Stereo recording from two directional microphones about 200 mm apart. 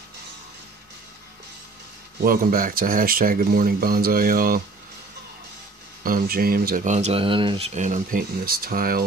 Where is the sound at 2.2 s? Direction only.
45° right (ahead or behind).